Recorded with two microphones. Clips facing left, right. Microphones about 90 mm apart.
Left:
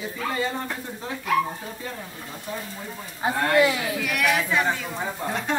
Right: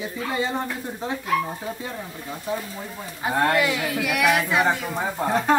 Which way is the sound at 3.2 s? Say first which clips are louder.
Left 1 dB; 25° left (ahead or behind).